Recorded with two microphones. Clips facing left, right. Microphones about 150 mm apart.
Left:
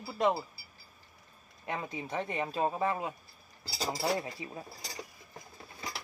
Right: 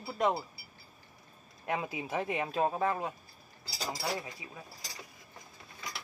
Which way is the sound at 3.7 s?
30° left (ahead or behind).